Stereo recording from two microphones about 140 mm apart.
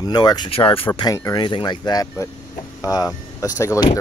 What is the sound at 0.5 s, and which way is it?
Speech, 40° left (ahead or behind).